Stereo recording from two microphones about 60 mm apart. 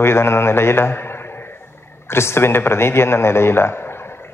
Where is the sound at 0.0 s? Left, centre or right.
Left.